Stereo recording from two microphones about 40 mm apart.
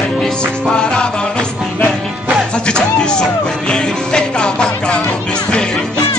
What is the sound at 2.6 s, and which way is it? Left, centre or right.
Music, left.